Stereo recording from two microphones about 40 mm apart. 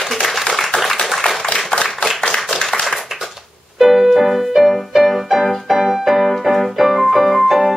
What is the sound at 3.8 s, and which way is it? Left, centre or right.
Music, centre.